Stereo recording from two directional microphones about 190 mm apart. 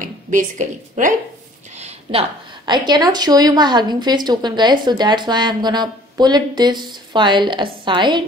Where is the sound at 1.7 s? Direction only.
35° right (ahead or behind).